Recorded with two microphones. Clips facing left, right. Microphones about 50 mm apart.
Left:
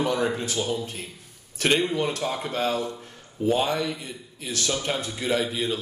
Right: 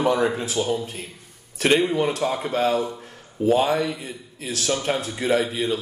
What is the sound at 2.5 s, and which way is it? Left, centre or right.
Speech, right.